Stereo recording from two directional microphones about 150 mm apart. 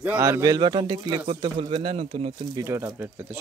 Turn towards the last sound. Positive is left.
turn(degrees=-10)  # may be behind; listen again after turning